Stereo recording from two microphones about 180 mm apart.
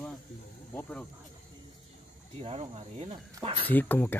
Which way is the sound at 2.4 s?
35° right (ahead or behind).